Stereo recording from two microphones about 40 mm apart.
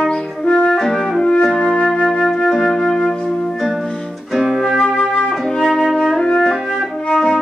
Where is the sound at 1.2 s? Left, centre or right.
Centre.